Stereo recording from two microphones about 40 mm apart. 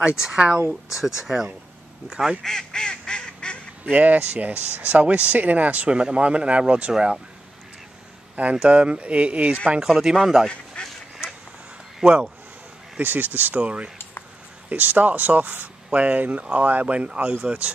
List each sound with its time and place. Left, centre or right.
0.0 s speech: centre
2.4 s goose: centre
3.9 s speech: right
5.9 s speech: right
8.6 s speech: right
9.8 s speech: centre
10.8 s duck: left
12.0 s speech: centre
13.0 s speech: right
13.6 s speech: right
14.7 s speech: right